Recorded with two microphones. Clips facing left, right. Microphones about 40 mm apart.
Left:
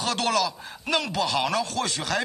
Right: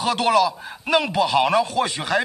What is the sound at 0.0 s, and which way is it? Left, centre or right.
A man's voice, centre.